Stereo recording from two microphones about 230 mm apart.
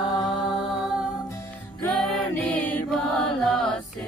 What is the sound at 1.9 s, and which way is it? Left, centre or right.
Mantra, centre.